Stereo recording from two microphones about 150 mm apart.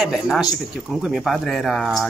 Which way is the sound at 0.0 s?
Centre (ahead or behind).